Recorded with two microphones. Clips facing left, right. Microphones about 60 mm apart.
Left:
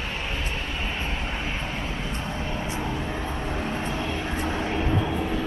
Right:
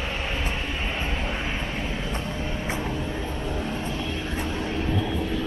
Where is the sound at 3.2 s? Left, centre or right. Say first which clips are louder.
Even; left.